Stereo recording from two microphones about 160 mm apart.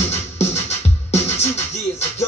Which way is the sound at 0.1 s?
40° left (ahead or behind).